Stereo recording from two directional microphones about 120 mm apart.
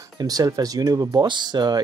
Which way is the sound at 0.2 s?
30° right (ahead or behind).